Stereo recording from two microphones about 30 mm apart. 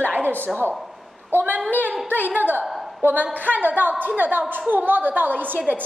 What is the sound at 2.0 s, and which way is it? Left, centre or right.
Speech, right.